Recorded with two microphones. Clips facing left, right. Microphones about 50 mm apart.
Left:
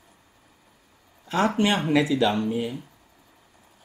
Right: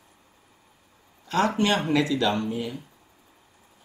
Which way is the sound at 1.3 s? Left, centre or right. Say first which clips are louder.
Left 1 dB; centre.